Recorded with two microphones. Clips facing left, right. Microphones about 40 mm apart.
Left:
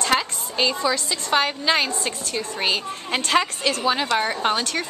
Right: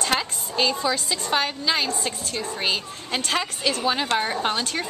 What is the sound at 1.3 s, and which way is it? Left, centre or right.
A woman's voice, centre.